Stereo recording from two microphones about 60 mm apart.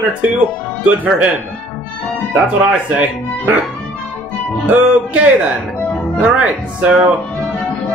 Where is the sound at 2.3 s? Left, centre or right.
Right.